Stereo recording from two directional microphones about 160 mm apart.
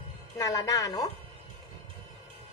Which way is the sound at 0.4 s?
20° left (ahead or behind).